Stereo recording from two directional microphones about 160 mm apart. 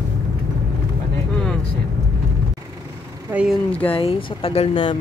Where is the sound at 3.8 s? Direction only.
35° left (ahead or behind).